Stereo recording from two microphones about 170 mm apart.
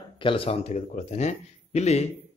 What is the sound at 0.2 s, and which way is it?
Speech, 30° left (ahead or behind).